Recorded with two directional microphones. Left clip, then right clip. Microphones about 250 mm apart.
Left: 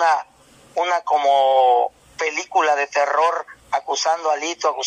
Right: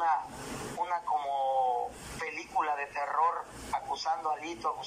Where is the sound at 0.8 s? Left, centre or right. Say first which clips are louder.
Left 14 dB; left.